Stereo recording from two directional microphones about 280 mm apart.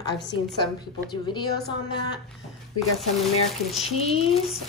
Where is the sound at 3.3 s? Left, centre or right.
Left.